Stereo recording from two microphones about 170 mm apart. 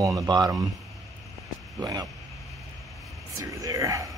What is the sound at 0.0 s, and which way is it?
Speech, 20° right (ahead or behind).